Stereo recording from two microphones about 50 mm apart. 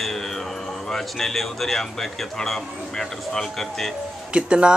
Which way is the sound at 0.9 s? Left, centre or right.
Centre.